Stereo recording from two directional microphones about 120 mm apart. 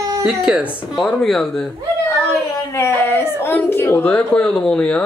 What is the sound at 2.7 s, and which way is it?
Speech, 20° left (ahead or behind).